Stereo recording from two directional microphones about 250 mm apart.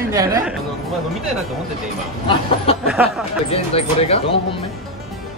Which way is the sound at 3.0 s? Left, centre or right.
Centre.